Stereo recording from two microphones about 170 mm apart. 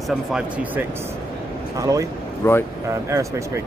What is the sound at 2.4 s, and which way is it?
Speech, 15° left (ahead or behind).